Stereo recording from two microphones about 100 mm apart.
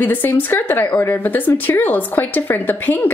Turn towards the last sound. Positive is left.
turn(degrees=20)  # may be behind; listen again after turning